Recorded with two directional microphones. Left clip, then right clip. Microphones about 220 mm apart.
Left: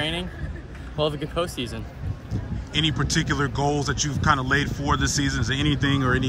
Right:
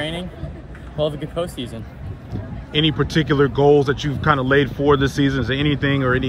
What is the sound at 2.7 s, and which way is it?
Speech, 5° left (ahead or behind).